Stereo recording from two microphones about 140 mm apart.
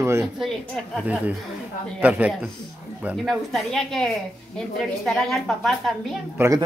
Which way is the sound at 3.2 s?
Centre (ahead or behind).